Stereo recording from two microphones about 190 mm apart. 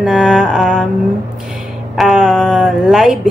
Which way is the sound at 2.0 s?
Centre (ahead or behind).